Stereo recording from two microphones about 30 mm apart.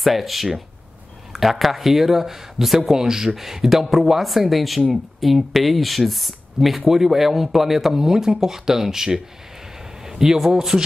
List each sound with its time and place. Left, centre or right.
0.0 s speech: centre
3.0 s speech: centre
10.0 s a sound: centre
10.7 s speech: centre